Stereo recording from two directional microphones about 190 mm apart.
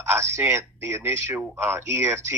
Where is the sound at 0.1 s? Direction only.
15° right (ahead or behind).